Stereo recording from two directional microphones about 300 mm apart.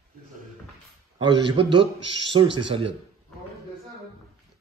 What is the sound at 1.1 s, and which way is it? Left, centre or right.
Speech, centre.